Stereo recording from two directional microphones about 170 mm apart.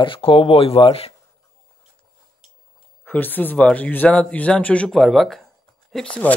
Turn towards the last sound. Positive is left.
turn(degrees=5)  # may be behind; listen again after turning